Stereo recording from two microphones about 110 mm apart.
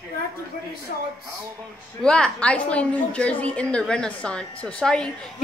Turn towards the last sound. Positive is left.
turn(degrees=5)  # may be behind; listen again after turning